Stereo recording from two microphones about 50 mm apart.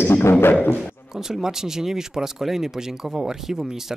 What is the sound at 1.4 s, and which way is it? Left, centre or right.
Speech, centre.